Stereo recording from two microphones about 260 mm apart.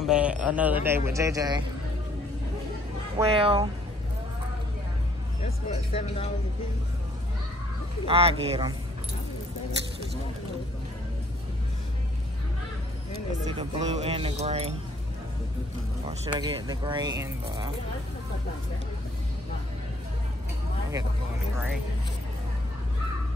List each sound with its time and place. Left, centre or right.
0.0 s a man's voice: centre
3.2 s speech: right
5.4 s speech: left
8.0 s speech: right
13.5 s speech: right
16.1 s speech: centre